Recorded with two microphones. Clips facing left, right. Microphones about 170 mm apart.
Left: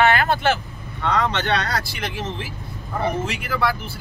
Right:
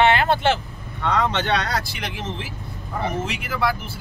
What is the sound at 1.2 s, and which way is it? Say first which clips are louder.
Speech: even; 15° right (ahead or behind).